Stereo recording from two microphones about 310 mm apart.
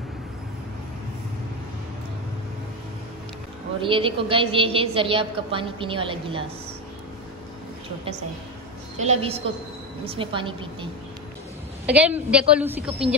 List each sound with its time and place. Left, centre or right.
3.8 s a woman's voice: centre
8.9 s a woman's voice: right
11.8 s a woman's voice: centre